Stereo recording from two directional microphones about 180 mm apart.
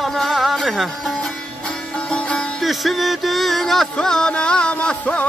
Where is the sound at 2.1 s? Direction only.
5° left (ahead or behind).